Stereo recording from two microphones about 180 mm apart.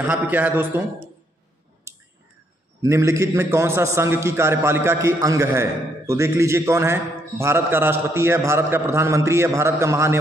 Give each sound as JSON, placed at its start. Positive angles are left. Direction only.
{"t": 0.0, "sound": "a man's voice", "side_deg": -10}
{"t": 2.8, "sound": "a man's voice", "side_deg": -15}